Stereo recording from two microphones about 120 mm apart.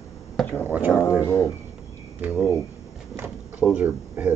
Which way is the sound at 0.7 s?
15° right (ahead or behind).